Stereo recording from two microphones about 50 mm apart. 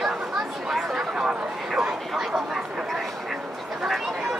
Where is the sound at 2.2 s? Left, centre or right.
Centre.